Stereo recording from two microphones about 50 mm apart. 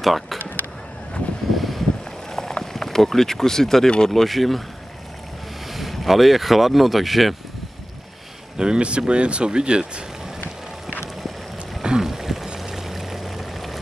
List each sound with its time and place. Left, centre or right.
0.0 s a sound: centre
1.5 s vehicle: centre
2.3 s speech: centre
4.1 s speech: centre
5.7 s speech: centre
8.5 s speech: centre
11.8 s a sound: centre
12.5 s pour: centre